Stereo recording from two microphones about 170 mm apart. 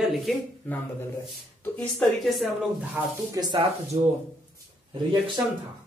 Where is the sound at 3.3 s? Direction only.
25° right (ahead or behind).